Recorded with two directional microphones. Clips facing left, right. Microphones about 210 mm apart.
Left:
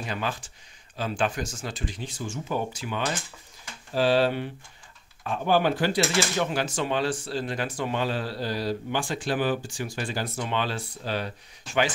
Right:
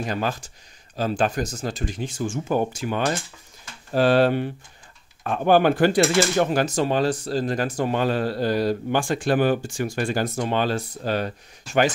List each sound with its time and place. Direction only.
0.0 s speech: 45° right (ahead or behind)